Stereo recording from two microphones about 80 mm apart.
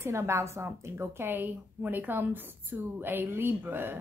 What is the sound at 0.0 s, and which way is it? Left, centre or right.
A woman's voice, right.